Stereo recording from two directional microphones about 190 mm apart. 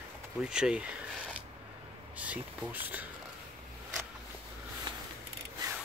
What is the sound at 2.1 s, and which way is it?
Speech, 10° right (ahead or behind).